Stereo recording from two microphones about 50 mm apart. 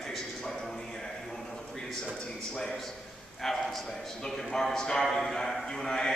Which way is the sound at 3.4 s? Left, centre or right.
Centre.